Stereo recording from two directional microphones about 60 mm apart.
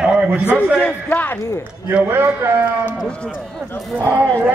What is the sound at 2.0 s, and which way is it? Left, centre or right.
Speech, right.